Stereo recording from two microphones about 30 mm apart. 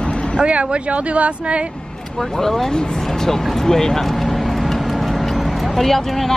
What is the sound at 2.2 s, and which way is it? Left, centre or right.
Speech, centre.